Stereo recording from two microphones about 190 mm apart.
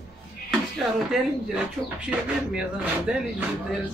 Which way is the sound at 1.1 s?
5° right (ahead or behind).